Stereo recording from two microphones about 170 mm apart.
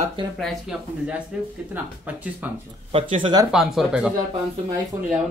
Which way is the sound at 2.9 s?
35° right (ahead or behind).